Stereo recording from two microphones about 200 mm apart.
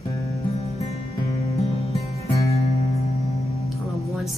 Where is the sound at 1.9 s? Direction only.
30° left (ahead or behind).